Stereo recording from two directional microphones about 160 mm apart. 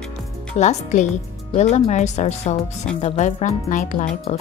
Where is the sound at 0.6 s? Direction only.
45° left (ahead or behind).